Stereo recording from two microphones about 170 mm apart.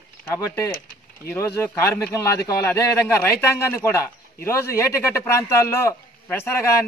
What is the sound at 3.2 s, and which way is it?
A man's voice, 15° left (ahead or behind).